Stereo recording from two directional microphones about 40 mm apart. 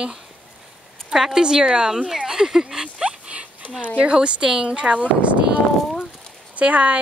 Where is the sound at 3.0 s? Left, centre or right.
Right.